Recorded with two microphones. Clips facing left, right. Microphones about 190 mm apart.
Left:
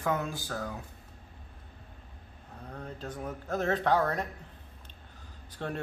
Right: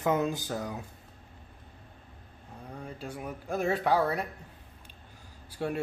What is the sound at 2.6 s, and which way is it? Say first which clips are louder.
Speech: even; 10° right (ahead or behind).